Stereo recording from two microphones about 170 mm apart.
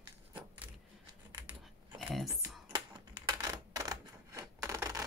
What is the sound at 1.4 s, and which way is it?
Scissors, 10° right (ahead or behind).